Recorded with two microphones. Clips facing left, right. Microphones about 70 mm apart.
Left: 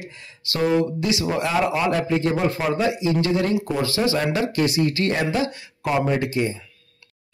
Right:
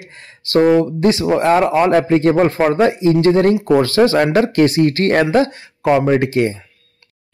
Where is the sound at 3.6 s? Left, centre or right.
Right.